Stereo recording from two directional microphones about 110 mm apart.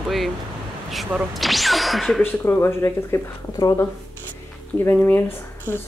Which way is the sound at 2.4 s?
25° left (ahead or behind).